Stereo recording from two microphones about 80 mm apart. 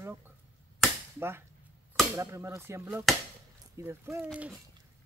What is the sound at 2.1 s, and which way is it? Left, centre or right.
Speech, right.